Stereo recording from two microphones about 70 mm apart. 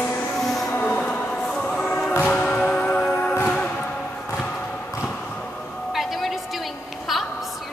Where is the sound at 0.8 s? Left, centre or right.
Centre.